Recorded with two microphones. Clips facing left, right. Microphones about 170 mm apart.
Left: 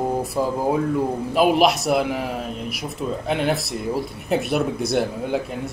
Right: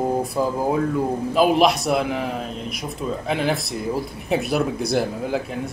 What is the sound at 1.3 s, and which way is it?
A man's voice, centre (ahead or behind).